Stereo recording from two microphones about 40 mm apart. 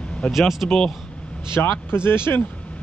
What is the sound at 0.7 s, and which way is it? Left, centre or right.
Speech, centre.